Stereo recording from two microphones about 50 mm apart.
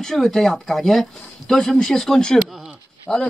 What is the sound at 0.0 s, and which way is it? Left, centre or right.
Speech, centre.